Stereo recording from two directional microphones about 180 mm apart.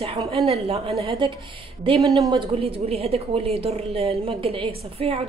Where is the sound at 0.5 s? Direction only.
35° right (ahead or behind).